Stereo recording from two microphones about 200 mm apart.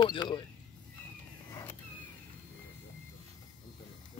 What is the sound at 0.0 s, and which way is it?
Speech, 20° left (ahead or behind).